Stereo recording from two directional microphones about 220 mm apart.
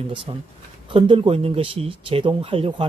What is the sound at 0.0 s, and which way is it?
Speech, 25° right (ahead or behind).